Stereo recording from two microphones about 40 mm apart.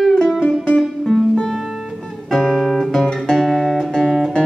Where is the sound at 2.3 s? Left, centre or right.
Centre.